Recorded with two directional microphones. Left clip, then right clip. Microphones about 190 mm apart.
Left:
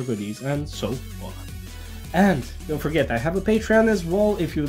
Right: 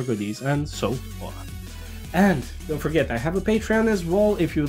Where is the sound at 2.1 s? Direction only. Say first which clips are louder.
Left 1 dB; 10° right (ahead or behind).